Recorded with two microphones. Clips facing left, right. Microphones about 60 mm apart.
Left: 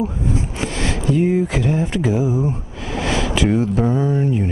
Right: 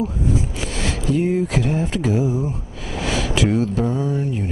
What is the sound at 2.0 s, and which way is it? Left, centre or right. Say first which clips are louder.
Speech: even; centre.